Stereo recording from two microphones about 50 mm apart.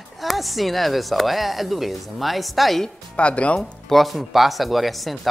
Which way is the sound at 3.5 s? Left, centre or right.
Centre.